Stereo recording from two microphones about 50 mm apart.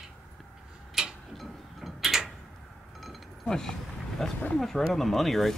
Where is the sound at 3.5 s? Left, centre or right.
Centre.